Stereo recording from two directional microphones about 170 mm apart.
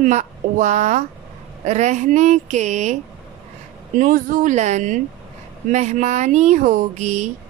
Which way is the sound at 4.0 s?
50° right (ahead or behind).